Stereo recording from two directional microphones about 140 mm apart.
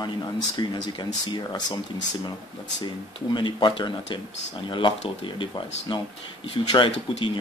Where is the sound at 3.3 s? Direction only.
35° left (ahead or behind).